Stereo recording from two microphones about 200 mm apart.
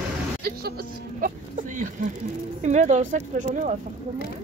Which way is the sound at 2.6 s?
35° right (ahead or behind).